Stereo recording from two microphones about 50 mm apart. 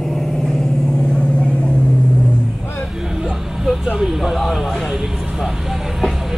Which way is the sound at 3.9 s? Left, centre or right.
Centre.